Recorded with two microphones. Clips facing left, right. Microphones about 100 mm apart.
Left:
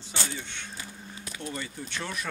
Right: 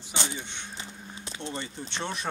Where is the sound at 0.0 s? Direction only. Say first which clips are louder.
Right 1 dB; 20° right (ahead or behind).